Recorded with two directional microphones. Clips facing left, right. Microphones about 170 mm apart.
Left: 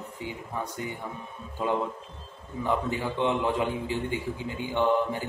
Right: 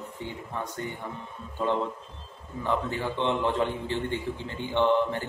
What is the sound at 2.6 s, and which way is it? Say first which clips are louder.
A man's voice: even; 15° left (ahead or behind).